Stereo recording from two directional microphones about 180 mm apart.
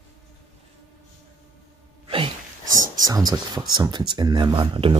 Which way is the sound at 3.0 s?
20° right (ahead or behind).